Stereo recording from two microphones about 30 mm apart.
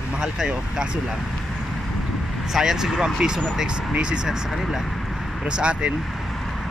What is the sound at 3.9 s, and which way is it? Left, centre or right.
Speech, right.